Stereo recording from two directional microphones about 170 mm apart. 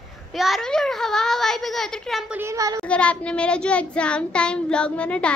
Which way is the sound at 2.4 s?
20° right (ahead or behind).